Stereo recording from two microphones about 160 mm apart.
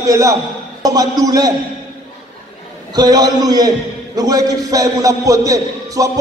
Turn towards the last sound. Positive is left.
turn(degrees=-20)  # may be behind; listen again after turning